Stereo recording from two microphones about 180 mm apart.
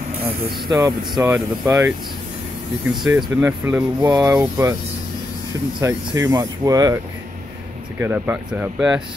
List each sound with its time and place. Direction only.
0.7 s speech: 20° right (ahead or behind)
1.2 s speech: 10° right (ahead or behind)
5.8 s speech: 20° right (ahead or behind)
8.0 s speech: 10° right (ahead or behind)